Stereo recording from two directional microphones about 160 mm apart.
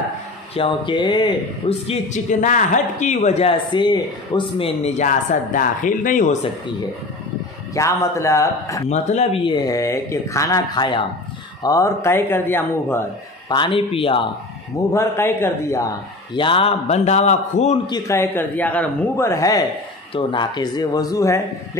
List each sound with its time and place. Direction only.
0.6 s speech: 30° left (ahead or behind)
2.4 s speech: 50° left (ahead or behind)
7.7 s speech: 20° left (ahead or behind)
8.8 s speech: 45° left (ahead or behind); by 13.0 s 15° left (ahead or behind)
13.5 s a man's voice: 30° left (ahead or behind)
14.9 s speech: 15° left (ahead or behind)
16.3 s speech: 30° left (ahead or behind)
17.8 s speech: 20° left (ahead or behind)
20.2 s speech: 30° left (ahead or behind)